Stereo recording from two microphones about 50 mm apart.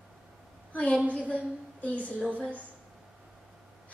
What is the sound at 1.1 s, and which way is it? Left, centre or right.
A woman's voice, left.